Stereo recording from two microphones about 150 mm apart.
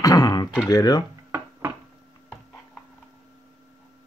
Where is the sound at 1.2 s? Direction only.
15° right (ahead or behind).